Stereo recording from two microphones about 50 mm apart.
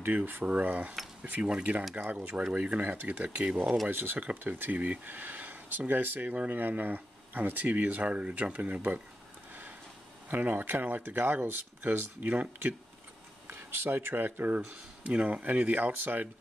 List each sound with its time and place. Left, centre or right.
0.0 s speech: right
0.5 s speech: right
3.9 s speech: right
10.3 s speech: right
13.5 s a sound: right
13.8 s speech: right
15.0 s speech: right